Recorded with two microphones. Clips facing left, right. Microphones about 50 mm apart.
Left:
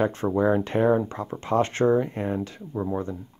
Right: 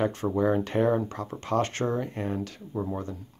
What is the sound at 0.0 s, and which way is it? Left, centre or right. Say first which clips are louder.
Speech: left 3 dB; left.